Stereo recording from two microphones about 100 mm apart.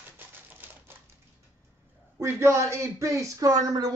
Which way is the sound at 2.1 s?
30° right (ahead or behind).